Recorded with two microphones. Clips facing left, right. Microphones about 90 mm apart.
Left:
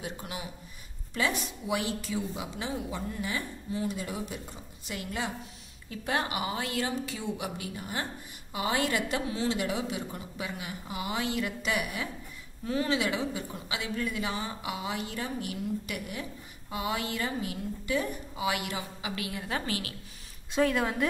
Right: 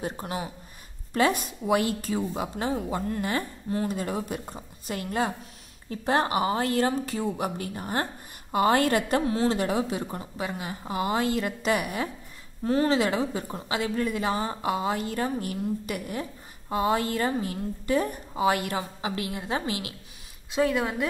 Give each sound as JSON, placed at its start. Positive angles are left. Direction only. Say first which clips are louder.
{"t": 0.0, "sound": "a woman's voice", "louder": "right 6 dB", "side_deg": -40}
{"t": 20.5, "sound": "a woman's voice", "louder": "right 2 dB", "side_deg": 0}